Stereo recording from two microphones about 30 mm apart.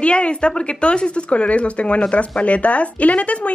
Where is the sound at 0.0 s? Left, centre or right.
Left.